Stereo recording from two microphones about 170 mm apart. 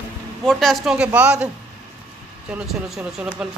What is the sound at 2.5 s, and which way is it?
Speech, 5° right (ahead or behind).